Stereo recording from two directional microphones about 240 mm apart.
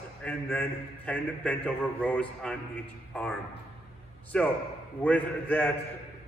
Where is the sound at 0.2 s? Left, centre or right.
Centre.